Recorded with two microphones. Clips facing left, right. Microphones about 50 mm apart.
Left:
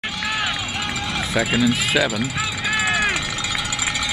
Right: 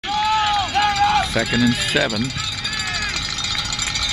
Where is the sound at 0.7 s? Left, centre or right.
Right.